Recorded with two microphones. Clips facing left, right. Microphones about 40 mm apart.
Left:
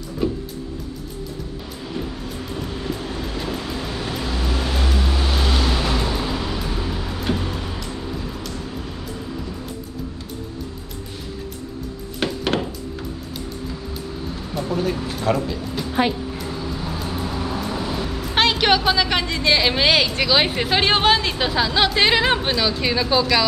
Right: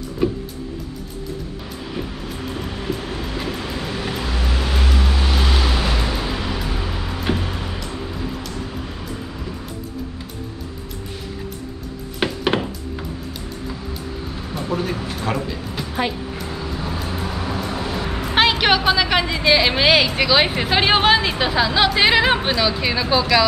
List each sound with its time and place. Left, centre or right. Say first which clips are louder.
0.2 s music: right 2 dB; centre
2.9 s vehicle: right 3 dB; centre
12.2 s music: right 2 dB; centre
14.7 s speech: even; centre
17.1 s vehicle: even; right
17.7 s music: right 1 dB; right
18.3 s a woman's voice: right 1 dB; centre